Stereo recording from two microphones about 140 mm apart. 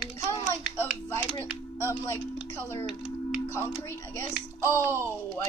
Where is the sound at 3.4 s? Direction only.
15° left (ahead or behind).